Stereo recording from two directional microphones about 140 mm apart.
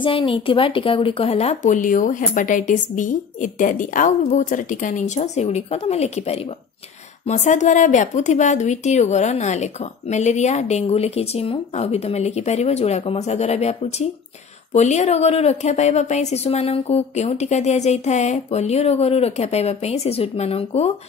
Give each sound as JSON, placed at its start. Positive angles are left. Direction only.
{"t": 0.0, "sound": "speech", "side_deg": 40}